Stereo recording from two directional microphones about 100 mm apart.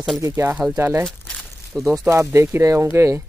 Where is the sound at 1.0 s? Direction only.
5° left (ahead or behind).